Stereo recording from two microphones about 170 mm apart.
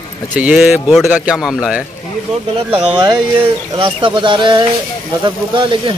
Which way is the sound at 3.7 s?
30° right (ahead or behind).